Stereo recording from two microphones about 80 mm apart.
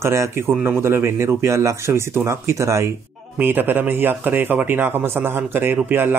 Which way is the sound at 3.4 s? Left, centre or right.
Right.